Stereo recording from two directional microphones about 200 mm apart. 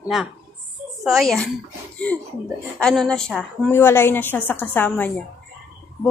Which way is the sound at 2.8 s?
5° left (ahead or behind).